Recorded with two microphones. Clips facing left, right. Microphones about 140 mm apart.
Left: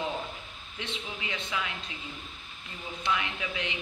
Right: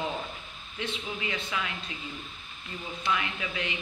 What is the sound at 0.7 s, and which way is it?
Speech, 20° left (ahead or behind).